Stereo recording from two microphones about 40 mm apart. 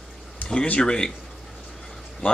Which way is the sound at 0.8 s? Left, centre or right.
Centre.